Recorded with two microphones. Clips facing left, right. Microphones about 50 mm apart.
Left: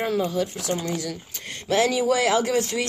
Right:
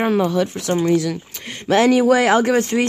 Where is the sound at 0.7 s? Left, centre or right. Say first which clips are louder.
Right 10 dB; right.